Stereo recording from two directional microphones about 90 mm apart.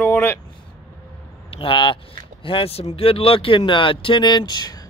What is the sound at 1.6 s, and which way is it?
Speech, 70° left (ahead or behind).